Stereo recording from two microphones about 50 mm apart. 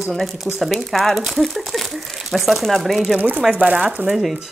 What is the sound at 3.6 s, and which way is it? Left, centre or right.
Speech, right.